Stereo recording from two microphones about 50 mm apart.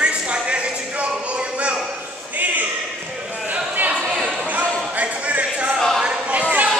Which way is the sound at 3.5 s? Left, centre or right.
Right.